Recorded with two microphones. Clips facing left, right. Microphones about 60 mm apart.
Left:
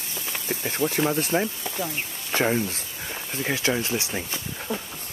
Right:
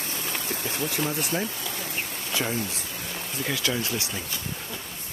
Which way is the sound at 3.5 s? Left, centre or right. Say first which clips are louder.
Left 3 dB; left.